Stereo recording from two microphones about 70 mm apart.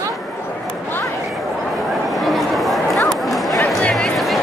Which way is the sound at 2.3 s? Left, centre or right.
Centre.